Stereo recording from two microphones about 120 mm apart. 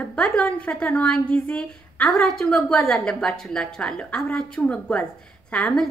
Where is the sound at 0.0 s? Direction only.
5° left (ahead or behind).